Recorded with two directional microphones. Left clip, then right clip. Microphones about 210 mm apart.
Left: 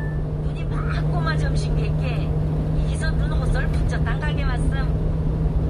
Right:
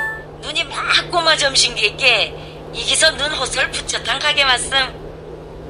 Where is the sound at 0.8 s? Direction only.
50° right (ahead or behind).